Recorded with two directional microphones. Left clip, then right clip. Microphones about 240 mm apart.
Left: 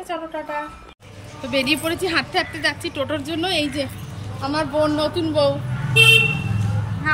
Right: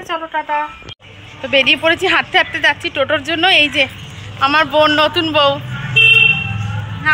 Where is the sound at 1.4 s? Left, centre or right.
Centre.